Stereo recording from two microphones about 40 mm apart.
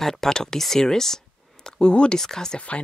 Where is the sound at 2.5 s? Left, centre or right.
Left.